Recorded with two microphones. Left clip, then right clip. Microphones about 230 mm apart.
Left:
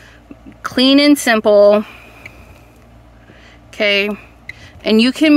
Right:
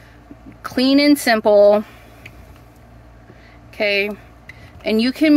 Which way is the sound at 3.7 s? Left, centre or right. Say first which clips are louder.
Left 4 dB; centre.